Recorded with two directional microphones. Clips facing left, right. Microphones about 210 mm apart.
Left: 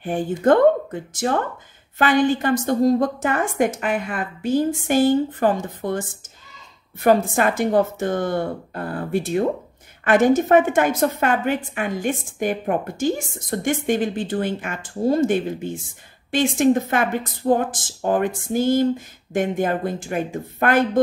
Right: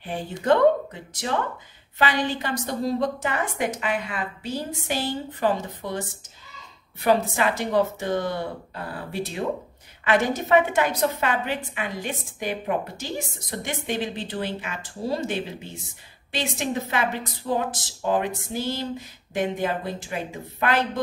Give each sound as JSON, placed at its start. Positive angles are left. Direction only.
{"t": 0.0, "sound": "a woman's voice", "side_deg": 50}